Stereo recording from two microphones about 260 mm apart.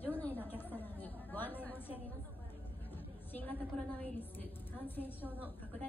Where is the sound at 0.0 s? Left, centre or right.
Centre.